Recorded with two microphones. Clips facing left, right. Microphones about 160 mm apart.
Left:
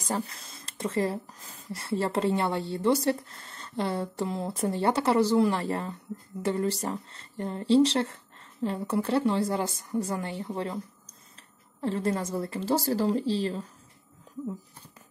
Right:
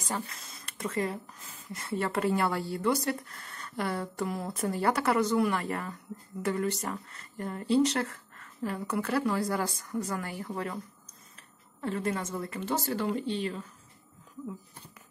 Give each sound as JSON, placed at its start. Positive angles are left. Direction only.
{"t": 0.0, "sound": "speech", "side_deg": 35}
{"t": 11.8, "sound": "a woman's voice", "side_deg": 30}